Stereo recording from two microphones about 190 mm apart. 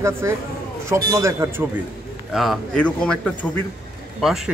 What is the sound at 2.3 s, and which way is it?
Speech, centre (ahead or behind).